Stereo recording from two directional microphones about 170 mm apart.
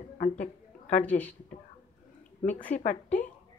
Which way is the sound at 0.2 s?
50° left (ahead or behind).